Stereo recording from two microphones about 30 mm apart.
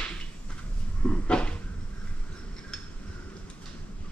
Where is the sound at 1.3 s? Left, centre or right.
Left.